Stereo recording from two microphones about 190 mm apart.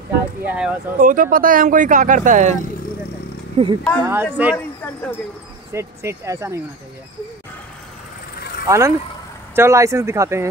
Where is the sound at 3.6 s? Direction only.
30° right (ahead or behind).